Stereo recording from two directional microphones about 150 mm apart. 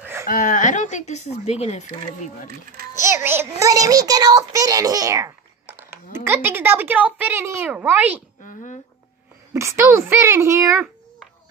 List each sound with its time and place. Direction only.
0.0 s a sound: 15° right (ahead or behind)
0.3 s speech: 60° left (ahead or behind)
2.9 s a child's voice: 20° right (ahead or behind)
8.4 s a woman's voice: 60° left (ahead or behind)
9.5 s speech: 20° right (ahead or behind)